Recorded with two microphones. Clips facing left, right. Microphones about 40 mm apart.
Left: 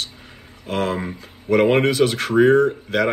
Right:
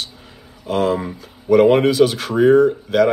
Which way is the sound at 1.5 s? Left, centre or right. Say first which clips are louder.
Right 4 dB; left.